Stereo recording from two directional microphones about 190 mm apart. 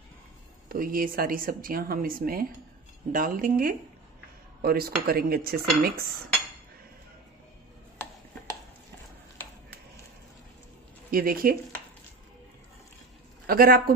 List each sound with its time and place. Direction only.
0.7 s speech: 50° right (ahead or behind)
11.1 s speech: 50° right (ahead or behind)
13.5 s speech: 50° right (ahead or behind)